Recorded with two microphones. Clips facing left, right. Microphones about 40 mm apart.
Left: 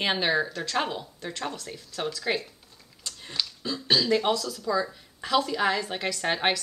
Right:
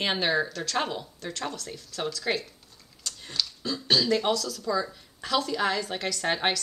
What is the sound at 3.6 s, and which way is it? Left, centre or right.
Speech, centre.